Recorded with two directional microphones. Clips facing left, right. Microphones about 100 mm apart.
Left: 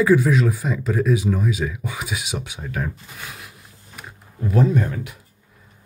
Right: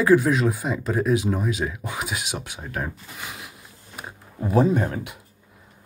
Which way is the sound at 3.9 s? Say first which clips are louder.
Right 2 dB; 25° right (ahead or behind).